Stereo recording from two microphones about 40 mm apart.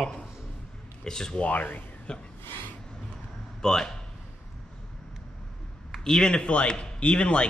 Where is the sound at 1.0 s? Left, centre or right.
Centre.